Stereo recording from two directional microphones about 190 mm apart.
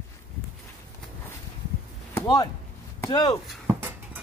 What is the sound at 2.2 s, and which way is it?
Speech, 20° left (ahead or behind).